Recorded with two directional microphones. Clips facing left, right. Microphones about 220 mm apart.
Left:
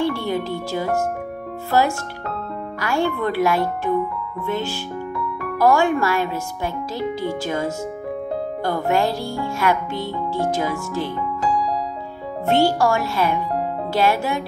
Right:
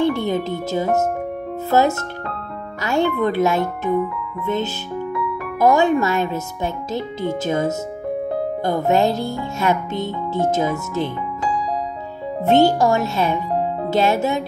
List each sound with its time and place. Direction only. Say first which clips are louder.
0.0 s speech: right 3 dB; 20° right (ahead or behind)
5.6 s speech: right 2 dB; 20° right (ahead or behind)
12.4 s speech: right 3 dB; 20° right (ahead or behind)